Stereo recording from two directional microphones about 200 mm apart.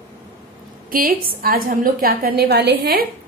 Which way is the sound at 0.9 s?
45° right (ahead or behind).